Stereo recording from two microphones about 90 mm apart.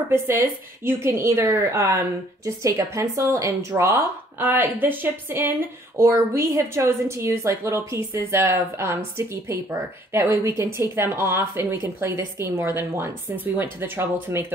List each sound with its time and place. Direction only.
0.8 s speech: 30° right (ahead or behind)
4.4 s speech: 20° right (ahead or behind)